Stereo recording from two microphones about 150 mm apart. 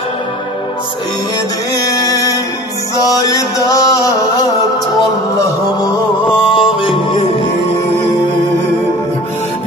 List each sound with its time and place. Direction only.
1.8 s music: 20° left (ahead or behind)
5.4 s music: 25° left (ahead or behind)